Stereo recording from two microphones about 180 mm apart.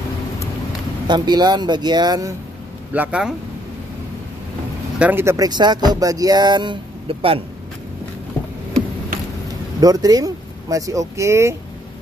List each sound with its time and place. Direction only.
1.0 s speech: 25° right (ahead or behind)
2.9 s speech: 5° right (ahead or behind)
4.9 s speech: 10° right (ahead or behind); by 7.4 s 30° right (ahead or behind)
9.8 s speech: 20° right (ahead or behind)